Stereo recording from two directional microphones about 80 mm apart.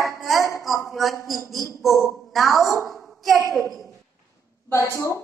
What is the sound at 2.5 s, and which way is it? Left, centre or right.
Speech, right.